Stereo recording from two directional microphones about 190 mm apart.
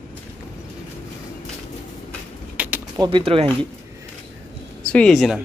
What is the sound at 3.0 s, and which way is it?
Speech, 25° right (ahead or behind).